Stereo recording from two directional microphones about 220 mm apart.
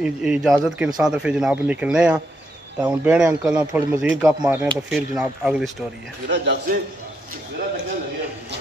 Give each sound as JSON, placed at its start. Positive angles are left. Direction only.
{"t": 0.0, "sound": "speech", "side_deg": -5}
{"t": 6.2, "sound": "speech", "side_deg": -50}